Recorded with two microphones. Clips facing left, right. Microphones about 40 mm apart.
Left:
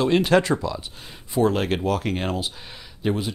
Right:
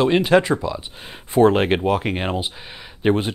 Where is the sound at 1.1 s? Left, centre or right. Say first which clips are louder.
Right 6 dB; right.